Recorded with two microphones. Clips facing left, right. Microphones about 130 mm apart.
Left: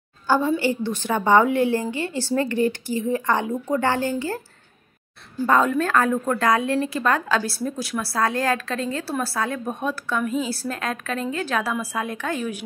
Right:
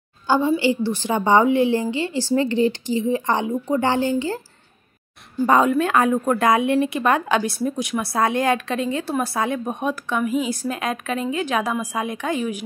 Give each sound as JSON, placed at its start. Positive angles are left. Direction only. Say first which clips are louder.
{"t": 0.3, "sound": "a woman's voice", "louder": "right 2 dB", "side_deg": -15}
{"t": 5.5, "sound": "a woman's voice", "louder": "right 2 dB", "side_deg": -10}